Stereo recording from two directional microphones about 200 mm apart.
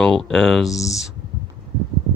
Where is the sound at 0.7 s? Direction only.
15° left (ahead or behind).